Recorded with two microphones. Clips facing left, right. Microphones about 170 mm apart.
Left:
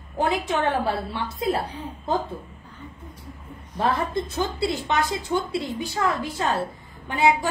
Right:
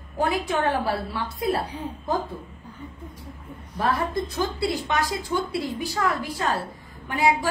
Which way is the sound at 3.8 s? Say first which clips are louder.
Left 1 dB; 25° left (ahead or behind).